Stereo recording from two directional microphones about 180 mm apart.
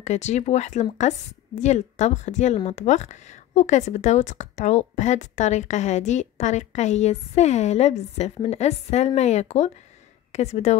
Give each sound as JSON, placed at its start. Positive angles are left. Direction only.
{"t": 0.0, "sound": "speech", "side_deg": 40}